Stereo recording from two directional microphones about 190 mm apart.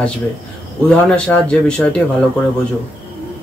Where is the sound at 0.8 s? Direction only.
5° left (ahead or behind).